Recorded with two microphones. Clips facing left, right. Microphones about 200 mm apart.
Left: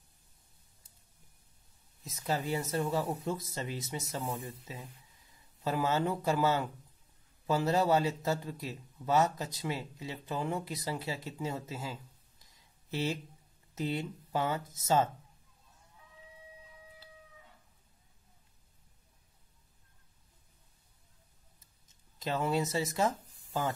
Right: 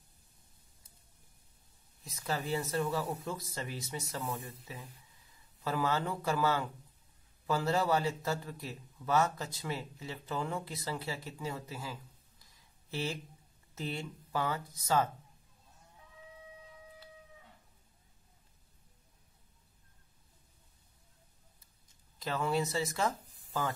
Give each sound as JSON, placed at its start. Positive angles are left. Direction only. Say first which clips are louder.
{"t": 2.0, "sound": "a man's voice", "louder": "left 2 dB", "side_deg": 20}
{"t": 5.6, "sound": "a man's voice", "louder": "left 2 dB", "side_deg": 20}
{"t": 21.8, "sound": "speech", "louder": "left 2 dB", "side_deg": 20}